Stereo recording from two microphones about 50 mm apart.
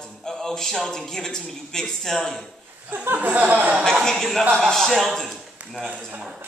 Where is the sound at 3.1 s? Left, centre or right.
Right.